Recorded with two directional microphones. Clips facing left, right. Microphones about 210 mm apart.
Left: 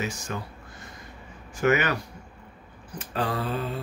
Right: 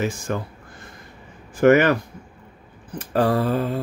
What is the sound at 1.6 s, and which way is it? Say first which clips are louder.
Speech: right 9 dB; 50° right (ahead or behind).